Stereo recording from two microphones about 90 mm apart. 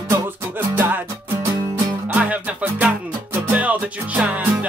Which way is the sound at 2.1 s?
15° right (ahead or behind).